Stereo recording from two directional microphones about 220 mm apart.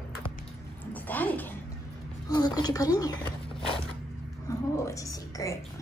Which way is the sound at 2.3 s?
20° left (ahead or behind).